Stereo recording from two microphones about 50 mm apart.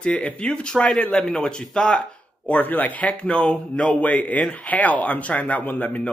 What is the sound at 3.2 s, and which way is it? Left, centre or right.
Speech, left.